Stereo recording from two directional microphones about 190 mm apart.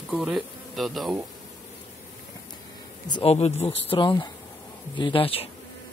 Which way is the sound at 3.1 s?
35° left (ahead or behind).